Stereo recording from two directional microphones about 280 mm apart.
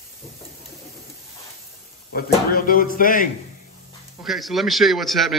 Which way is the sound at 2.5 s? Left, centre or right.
Left.